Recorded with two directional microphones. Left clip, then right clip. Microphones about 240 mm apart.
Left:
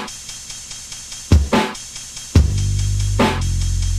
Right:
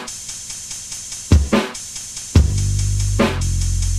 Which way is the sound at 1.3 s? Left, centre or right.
Right.